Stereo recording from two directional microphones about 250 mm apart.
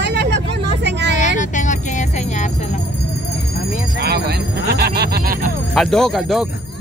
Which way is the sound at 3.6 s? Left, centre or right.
Left.